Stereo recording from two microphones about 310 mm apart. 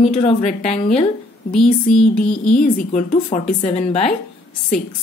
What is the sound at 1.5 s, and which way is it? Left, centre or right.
Speech, centre.